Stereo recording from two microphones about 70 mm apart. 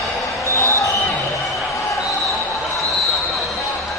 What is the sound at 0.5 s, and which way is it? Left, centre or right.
Basketball bounce, left.